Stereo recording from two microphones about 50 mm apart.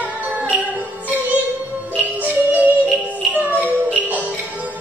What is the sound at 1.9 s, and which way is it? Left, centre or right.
Music, right.